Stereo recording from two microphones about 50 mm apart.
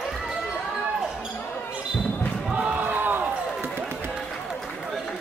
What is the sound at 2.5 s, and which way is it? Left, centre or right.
Crowd, right.